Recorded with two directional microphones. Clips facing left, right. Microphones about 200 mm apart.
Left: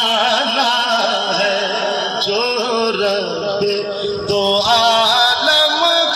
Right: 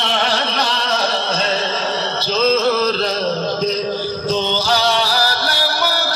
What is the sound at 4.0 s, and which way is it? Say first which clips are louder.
Music: left 4 dB; 80° left.